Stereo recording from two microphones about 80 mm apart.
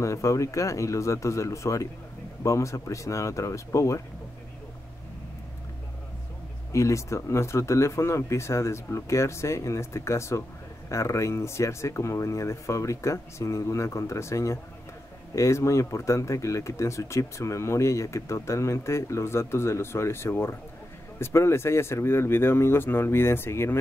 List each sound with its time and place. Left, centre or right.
0.0 s speech: left
6.7 s speech: left